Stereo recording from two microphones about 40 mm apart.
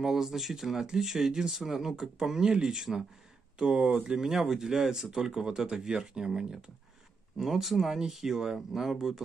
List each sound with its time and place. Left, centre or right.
0.0 s speech: centre
4.1 s speech: centre
7.3 s speech: centre